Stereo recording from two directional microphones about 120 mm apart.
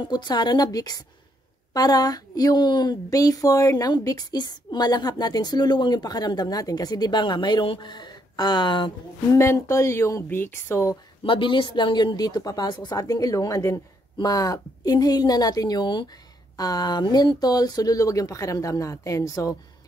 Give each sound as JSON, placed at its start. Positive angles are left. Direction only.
{"t": 0.1, "sound": "a woman's voice", "side_deg": 35}
{"t": 9.4, "sound": "speech", "side_deg": 25}
{"t": 11.2, "sound": "a woman's voice", "side_deg": 45}